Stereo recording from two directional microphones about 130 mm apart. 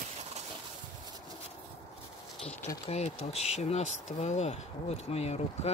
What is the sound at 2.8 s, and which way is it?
Speech, 55° left (ahead or behind).